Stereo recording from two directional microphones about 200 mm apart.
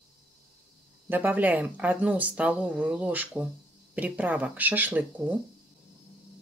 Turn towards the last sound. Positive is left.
turn(degrees=-10)  # may be behind; listen again after turning